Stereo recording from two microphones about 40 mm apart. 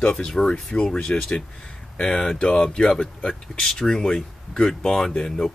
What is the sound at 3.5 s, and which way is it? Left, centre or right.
Speech, centre.